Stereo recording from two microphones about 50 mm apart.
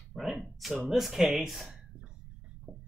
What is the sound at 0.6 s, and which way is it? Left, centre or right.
Speech, centre.